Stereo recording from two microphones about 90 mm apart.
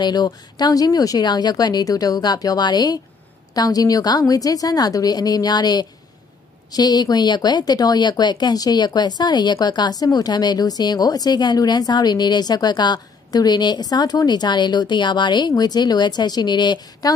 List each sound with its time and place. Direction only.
0.0 s speech: 50° left (ahead or behind)